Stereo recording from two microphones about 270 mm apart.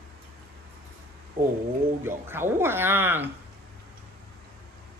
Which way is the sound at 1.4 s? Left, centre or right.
Right.